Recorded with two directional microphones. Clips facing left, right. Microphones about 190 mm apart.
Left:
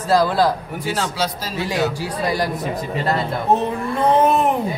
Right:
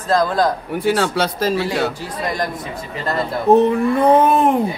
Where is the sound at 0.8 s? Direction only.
60° right (ahead or behind).